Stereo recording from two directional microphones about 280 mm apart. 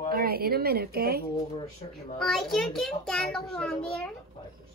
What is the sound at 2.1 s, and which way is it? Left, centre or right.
A child's voice, centre.